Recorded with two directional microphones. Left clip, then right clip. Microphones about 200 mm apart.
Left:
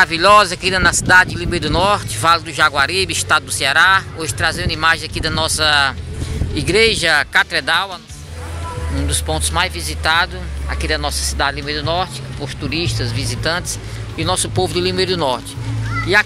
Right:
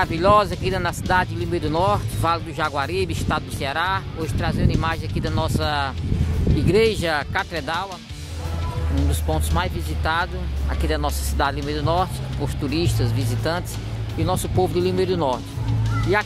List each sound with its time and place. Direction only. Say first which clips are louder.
0.0 s speech: left 7 dB; 5° right (ahead or behind)
9.1 s speech: left 7 dB; 10° right (ahead or behind)